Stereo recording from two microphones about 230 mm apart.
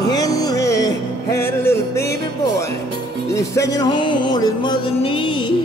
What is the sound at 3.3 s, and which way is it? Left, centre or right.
Music, centre.